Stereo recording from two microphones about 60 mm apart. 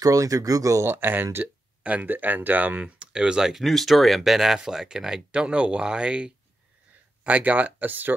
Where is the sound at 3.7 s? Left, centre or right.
Centre.